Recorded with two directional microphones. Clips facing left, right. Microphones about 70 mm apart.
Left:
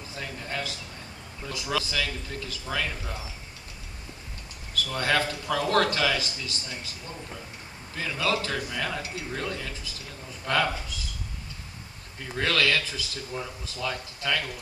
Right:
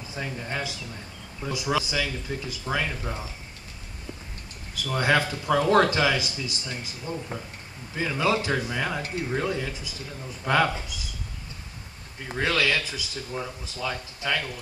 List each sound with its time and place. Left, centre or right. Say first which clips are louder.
0.1 s speech: right 3 dB; centre
4.9 s speech: right 3 dB; centre
7.9 s speech: right 3 dB; centre
12.3 s speech: right 1 dB; centre